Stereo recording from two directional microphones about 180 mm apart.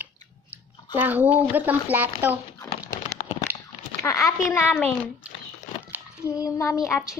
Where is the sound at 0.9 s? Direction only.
10° right (ahead or behind).